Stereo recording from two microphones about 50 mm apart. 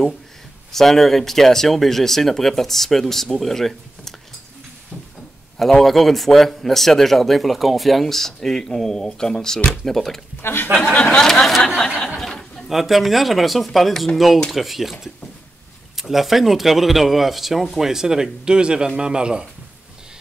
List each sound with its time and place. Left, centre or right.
0.7 s a man's voice: centre
5.6 s a man's voice: centre
10.4 s speech: left
10.7 s speech: centre
11.2 s a man's voice: centre